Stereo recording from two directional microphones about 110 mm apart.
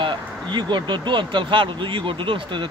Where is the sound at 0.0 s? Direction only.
45° right (ahead or behind).